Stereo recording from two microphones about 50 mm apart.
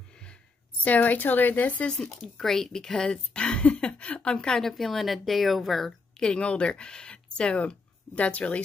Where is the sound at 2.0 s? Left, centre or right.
Centre.